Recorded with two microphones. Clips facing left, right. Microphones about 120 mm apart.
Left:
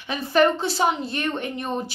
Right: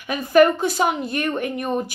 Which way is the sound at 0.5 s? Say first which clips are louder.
Right 3 dB; 50° right (ahead or behind).